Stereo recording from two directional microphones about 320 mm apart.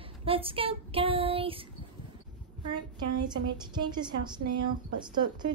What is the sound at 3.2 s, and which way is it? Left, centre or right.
Speech, centre.